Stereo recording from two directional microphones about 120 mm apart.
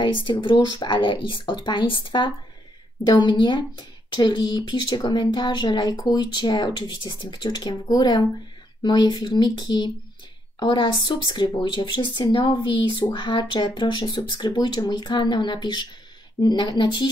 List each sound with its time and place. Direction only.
0.0 s speech: 45° left (ahead or behind)